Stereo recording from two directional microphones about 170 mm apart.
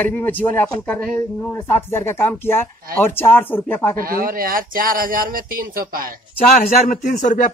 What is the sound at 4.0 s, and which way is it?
Speech, 55° right (ahead or behind).